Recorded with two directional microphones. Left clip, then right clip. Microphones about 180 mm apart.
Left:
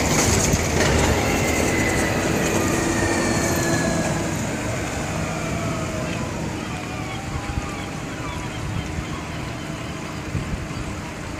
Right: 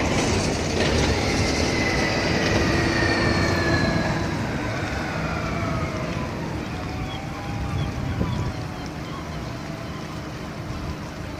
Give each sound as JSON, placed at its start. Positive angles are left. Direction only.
{"t": 0.0, "sound": "train", "side_deg": 25}